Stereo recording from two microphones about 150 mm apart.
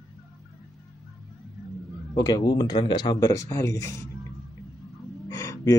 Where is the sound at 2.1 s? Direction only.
25° left (ahead or behind).